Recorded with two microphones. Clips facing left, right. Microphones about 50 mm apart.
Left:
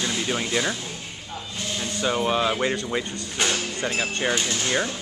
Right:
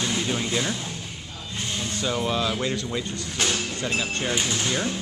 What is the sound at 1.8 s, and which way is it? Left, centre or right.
Speech, left.